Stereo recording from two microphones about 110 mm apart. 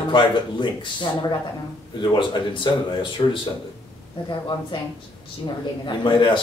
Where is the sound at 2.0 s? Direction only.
50° left (ahead or behind).